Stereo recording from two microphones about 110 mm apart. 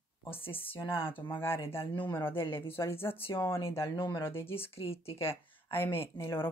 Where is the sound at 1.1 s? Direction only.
20° left (ahead or behind).